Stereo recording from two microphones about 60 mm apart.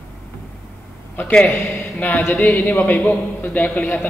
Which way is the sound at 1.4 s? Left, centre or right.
Left.